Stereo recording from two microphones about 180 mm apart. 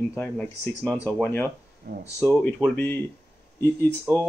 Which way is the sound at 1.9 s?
65° right (ahead or behind).